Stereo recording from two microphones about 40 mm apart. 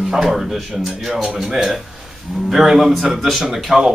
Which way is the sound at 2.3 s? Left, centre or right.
Centre.